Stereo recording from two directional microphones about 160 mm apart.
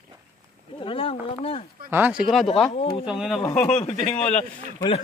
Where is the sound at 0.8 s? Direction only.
35° left (ahead or behind).